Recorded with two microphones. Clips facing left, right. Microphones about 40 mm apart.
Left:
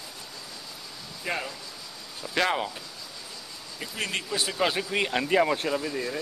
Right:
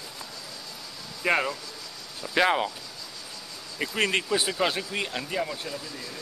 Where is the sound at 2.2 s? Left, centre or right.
Centre.